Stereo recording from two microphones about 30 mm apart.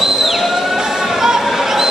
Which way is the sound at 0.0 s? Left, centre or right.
Centre.